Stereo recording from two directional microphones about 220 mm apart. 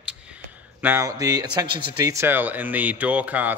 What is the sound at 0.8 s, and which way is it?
Speech, 10° right (ahead or behind).